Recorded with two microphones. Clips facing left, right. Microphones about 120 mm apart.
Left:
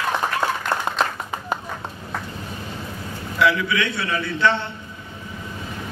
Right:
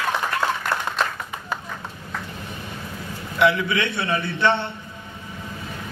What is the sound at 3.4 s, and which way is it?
A man's voice, 20° right (ahead or behind).